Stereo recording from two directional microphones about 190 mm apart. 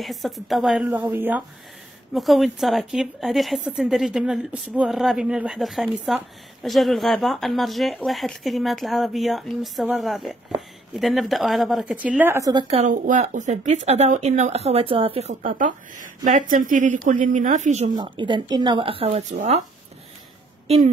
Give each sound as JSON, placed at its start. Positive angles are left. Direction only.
{"t": 0.0, "sound": "a woman's voice", "side_deg": 0}
{"t": 12.6, "sound": "speech", "side_deg": -30}
{"t": 12.9, "sound": "speech", "side_deg": -45}
{"t": 15.4, "sound": "speech", "side_deg": -45}
{"t": 17.9, "sound": "speech", "side_deg": -25}